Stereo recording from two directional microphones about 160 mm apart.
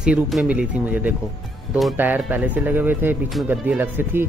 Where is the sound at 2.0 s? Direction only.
10° right (ahead or behind).